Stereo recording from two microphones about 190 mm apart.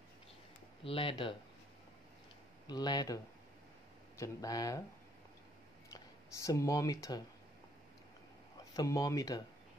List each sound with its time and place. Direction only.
0.8 s speech: 30° left (ahead or behind)
2.6 s speech: 20° left (ahead or behind)
4.2 s speech: 20° left (ahead or behind)
5.9 s speech: 15° left (ahead or behind)
8.7 s speech: 15° left (ahead or behind)